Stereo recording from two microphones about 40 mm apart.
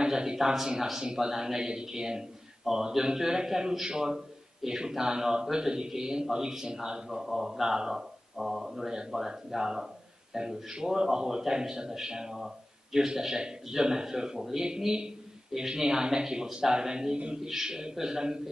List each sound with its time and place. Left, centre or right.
0.0 s a man's voice: centre
7.1 s a man's voice: centre